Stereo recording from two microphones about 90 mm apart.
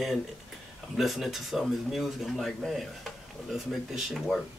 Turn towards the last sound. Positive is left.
turn(degrees=0)  # may be behind; listen again after turning